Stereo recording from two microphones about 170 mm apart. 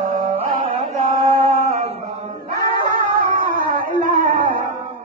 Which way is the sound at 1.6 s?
40° right (ahead or behind).